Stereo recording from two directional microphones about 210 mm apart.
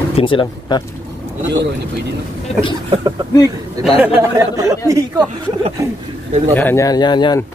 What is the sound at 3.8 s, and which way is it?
Speech, 10° right (ahead or behind).